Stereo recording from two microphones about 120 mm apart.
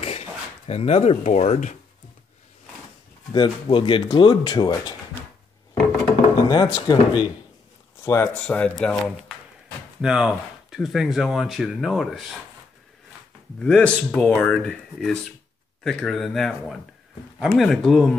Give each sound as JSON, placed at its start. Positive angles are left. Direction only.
{"t": 0.0, "sound": "speech", "side_deg": 60}
{"t": 3.3, "sound": "speech", "side_deg": 40}
{"t": 6.5, "sound": "speech", "side_deg": 30}
{"t": 8.0, "sound": "speech", "side_deg": 20}
{"t": 8.5, "sound": "speech", "side_deg": 10}
{"t": 10.0, "sound": "speech", "side_deg": -5}
{"t": 13.6, "sound": "speech", "side_deg": 5}